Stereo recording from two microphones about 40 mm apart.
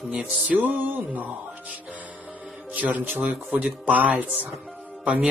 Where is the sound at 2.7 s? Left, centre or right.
Right.